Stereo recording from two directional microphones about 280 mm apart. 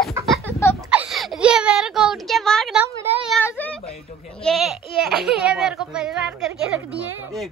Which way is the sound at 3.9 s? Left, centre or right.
Left.